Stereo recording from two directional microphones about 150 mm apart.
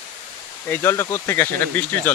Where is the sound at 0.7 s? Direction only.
15° left (ahead or behind).